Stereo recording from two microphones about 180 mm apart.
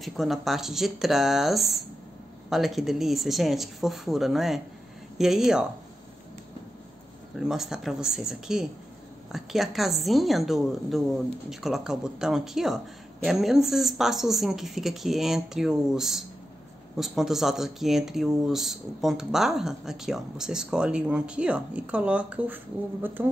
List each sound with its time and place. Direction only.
0.0 s speech: centre (ahead or behind)
7.3 s speech: centre (ahead or behind)